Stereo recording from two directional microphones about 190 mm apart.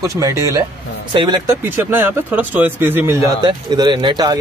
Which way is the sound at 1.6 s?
10° right (ahead or behind).